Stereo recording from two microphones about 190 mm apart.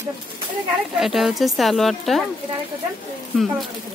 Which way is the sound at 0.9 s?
Centre (ahead or behind).